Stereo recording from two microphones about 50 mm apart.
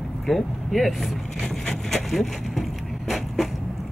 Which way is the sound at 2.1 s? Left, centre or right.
Centre.